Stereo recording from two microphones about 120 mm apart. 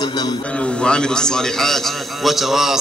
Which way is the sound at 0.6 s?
5° left (ahead or behind).